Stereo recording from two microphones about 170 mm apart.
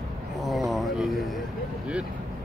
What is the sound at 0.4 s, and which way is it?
Vehicle, centre (ahead or behind).